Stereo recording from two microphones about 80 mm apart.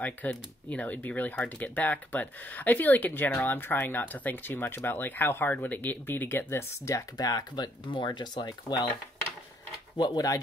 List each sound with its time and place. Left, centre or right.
0.0 s speech: centre; by 7.1 s left
7.2 s speech: left
9.9 s speech: left